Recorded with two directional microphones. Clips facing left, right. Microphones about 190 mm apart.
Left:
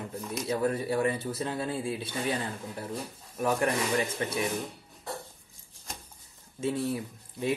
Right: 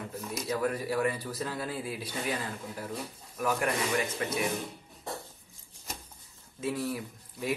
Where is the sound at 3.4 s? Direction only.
30° left (ahead or behind).